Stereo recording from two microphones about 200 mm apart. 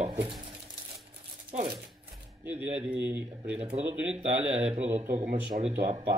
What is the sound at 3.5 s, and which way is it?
Speech, 30° right (ahead or behind).